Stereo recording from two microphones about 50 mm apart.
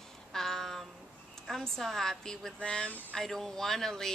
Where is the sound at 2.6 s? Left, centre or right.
Left.